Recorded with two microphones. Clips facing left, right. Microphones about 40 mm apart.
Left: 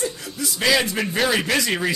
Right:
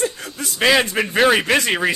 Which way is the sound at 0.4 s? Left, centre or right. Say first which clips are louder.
Right 4 dB; right.